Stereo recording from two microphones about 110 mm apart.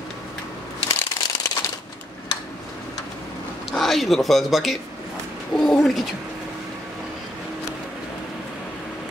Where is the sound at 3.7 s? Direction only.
Centre (ahead or behind).